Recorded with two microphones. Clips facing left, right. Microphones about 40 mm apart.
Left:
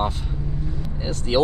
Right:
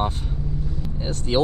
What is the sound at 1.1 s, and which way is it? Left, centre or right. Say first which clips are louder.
Speech: left 1 dB; left.